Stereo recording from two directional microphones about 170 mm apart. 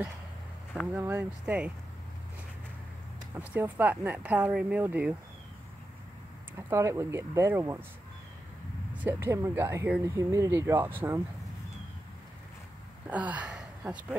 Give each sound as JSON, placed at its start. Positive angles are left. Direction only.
{"t": 0.9, "sound": "speech", "side_deg": -10}
{"t": 3.3, "sound": "speech", "side_deg": -10}
{"t": 6.7, "sound": "speech", "side_deg": -15}
{"t": 9.0, "sound": "speech", "side_deg": -15}
{"t": 13.0, "sound": "a sound", "side_deg": -10}